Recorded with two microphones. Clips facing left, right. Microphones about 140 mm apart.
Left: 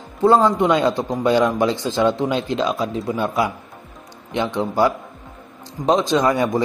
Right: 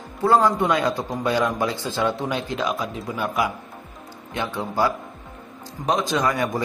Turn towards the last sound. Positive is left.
turn(degrees=25)  # may be behind; listen again after turning